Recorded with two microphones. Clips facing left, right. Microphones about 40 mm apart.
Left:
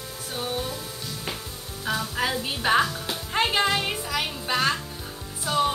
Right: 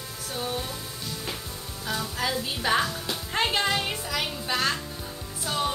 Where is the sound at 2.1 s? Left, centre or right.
Left.